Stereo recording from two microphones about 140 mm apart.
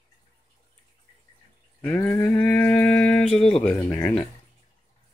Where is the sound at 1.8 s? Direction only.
15° left (ahead or behind).